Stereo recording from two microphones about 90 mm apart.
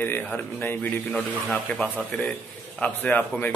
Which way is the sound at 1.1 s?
5° left (ahead or behind).